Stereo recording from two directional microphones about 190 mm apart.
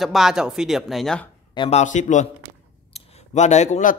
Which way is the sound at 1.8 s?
40° left (ahead or behind).